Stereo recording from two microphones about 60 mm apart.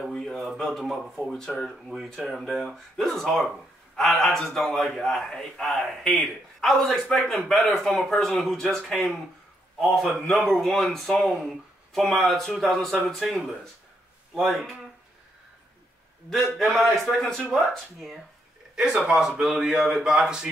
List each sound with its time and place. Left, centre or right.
0.0 s a sound: centre
0.4 s speech: centre
16.5 s speech: centre